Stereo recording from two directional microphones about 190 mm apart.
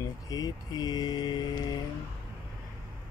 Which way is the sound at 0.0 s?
20° left (ahead or behind).